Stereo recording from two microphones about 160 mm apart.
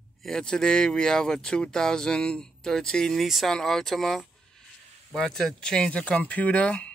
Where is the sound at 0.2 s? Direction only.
5° left (ahead or behind).